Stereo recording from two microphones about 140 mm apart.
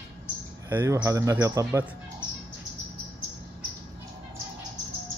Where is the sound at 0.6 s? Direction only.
15° right (ahead or behind).